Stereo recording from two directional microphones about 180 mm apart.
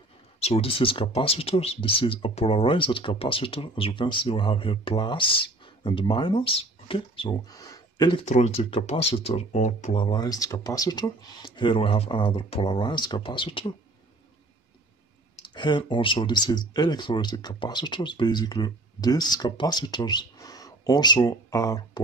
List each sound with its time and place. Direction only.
0.4 s speech: 35° left (ahead or behind)
8.3 s speech: 35° left (ahead or behind)
9.9 s speech: 25° left (ahead or behind)
15.4 s speech: 25° left (ahead or behind)